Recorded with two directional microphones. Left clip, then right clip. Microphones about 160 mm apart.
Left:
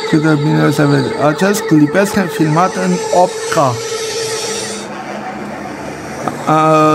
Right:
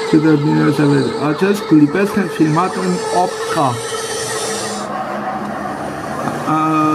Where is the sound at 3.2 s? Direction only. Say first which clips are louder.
Left 4 dB; 60° left (ahead or behind).